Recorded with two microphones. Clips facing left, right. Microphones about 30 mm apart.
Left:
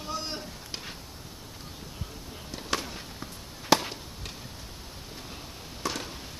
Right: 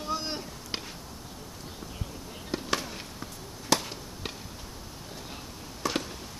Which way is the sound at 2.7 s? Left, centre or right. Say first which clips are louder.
Left 2 dB; centre.